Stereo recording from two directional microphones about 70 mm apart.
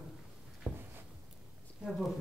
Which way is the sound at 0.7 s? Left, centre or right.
Centre.